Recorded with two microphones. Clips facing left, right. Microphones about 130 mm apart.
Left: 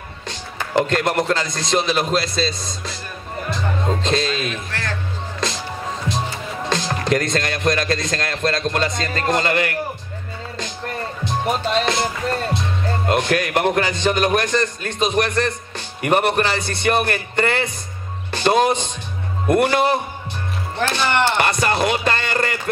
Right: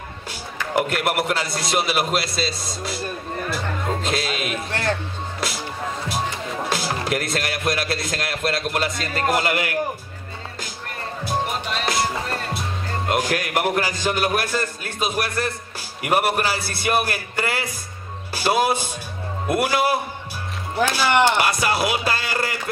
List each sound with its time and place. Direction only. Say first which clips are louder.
0.3 s a man's voice: left 2 dB; 10° right (ahead or behind)
4.0 s music: left 4 dB; 10° right (ahead or behind)
4.6 s music: right 5 dB; 25° right (ahead or behind)
6.7 s a man's voice: left 5 dB; 5° right (ahead or behind)
13.1 s a man's voice: left 3 dB; 10° right (ahead or behind)